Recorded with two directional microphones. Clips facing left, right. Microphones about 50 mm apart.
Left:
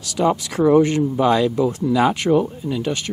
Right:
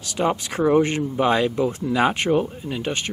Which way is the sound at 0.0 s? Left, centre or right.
Right.